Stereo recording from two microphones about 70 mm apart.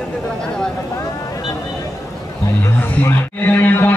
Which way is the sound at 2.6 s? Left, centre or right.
Left.